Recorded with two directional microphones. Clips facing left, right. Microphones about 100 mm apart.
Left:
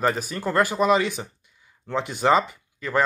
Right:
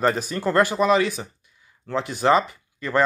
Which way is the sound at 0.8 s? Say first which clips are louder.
Right 1 dB; 20° left (ahead or behind).